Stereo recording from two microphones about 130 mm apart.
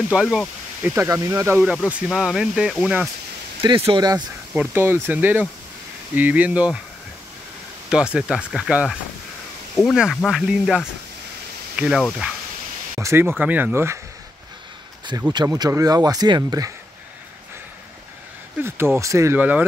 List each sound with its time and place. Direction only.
0.1 s speech: 5° right (ahead or behind)
2.0 s speech: 5° right (ahead or behind)
3.6 s speech: 40° right (ahead or behind)
4.6 s speech: 20° right (ahead or behind)
7.9 s speech: 5° right (ahead or behind)
12.9 s speech: 20° right (ahead or behind)
15.3 s speech: 30° right (ahead or behind)
18.6 s speech: 20° right (ahead or behind)